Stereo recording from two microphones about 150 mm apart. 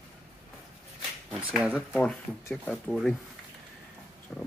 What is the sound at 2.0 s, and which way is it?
Speech, 5° left (ahead or behind).